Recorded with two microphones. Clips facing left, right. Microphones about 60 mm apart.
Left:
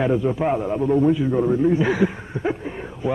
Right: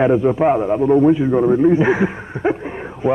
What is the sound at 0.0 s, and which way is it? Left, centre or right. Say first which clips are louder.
A man's voice: right 6 dB; right.